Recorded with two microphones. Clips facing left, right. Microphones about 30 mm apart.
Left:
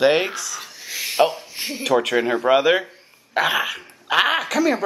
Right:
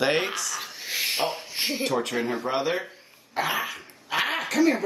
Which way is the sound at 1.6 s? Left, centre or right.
Right.